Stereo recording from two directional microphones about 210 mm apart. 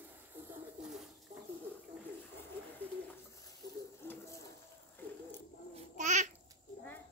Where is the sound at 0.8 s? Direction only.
5° right (ahead or behind).